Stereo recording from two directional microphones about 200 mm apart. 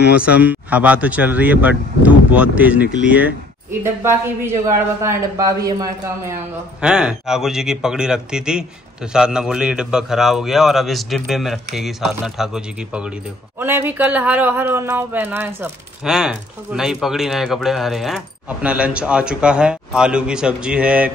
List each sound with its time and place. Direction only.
0.2 s speech: 5° right (ahead or behind)
3.8 s speech: 15° right (ahead or behind)
6.8 s speech: 5° right (ahead or behind)